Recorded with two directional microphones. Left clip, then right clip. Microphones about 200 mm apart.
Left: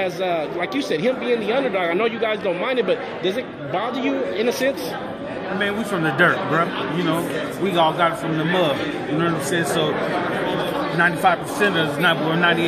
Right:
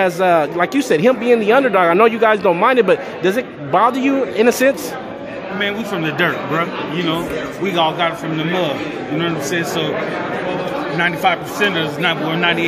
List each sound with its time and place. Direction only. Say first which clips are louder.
0.0 s a man's voice: right 8 dB; 45° right (ahead or behind)
5.6 s a man's voice: right 3 dB; 10° right (ahead or behind)
7.6 s a man's voice: right 1 dB; 5° right (ahead or behind)
9.2 s a man's voice: right 2 dB; 5° right (ahead or behind)
11.0 s a man's voice: right 1 dB; 10° right (ahead or behind)